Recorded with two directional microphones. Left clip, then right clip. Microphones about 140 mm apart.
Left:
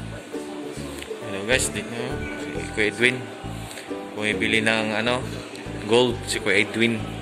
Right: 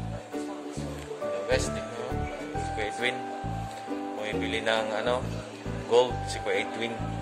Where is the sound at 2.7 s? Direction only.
15° right (ahead or behind).